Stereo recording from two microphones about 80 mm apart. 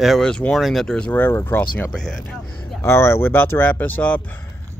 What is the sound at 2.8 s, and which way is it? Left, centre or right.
Speech, left.